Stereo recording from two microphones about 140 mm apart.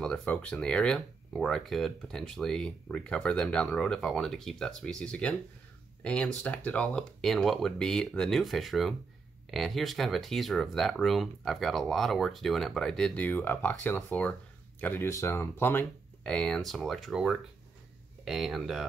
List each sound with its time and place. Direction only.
0.0 s speech: 5° left (ahead or behind)